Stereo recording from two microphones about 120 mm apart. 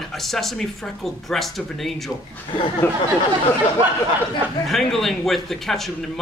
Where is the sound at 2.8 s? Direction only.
15° left (ahead or behind).